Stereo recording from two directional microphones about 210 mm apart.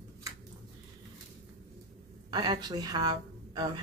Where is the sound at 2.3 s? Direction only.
20° right (ahead or behind).